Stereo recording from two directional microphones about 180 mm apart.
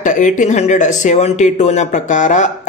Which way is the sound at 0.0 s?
45° left (ahead or behind).